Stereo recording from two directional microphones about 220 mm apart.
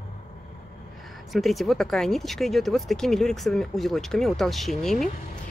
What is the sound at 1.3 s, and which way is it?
Speech, centre (ahead or behind).